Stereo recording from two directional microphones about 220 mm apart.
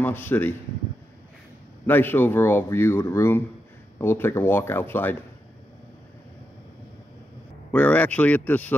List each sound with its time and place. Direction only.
0.0 s speech: 10° left (ahead or behind)
1.9 s speech: 10° left (ahead or behind)
7.7 s speech: 5° left (ahead or behind)